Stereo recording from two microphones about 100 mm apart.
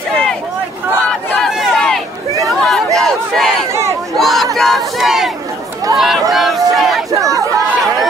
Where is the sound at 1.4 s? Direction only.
5° left (ahead or behind).